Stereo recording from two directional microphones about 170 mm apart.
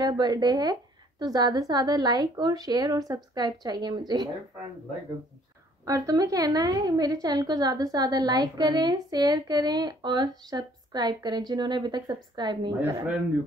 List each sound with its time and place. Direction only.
0.0 s a woman's voice: 25° right (ahead or behind)
5.9 s a woman's voice: 20° right (ahead or behind)